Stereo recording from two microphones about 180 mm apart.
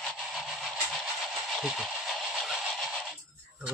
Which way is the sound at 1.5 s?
5° right (ahead or behind).